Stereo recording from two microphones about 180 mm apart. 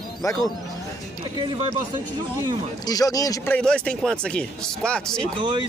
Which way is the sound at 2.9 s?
20° left (ahead or behind).